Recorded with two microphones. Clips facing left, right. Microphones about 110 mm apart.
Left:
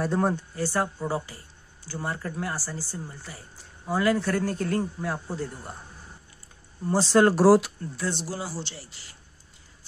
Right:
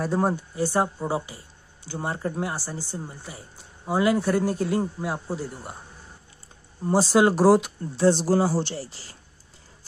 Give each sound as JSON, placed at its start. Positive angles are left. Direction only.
{"t": 0.0, "sound": "a man's voice", "side_deg": -5}
{"t": 6.9, "sound": "a man's voice", "side_deg": -10}
{"t": 7.8, "sound": "speech", "side_deg": -30}